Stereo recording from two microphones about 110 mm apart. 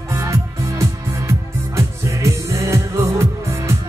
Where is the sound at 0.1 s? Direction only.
25° right (ahead or behind).